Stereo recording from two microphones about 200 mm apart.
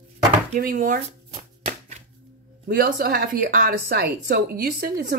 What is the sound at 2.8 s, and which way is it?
Speech, 45° right (ahead or behind).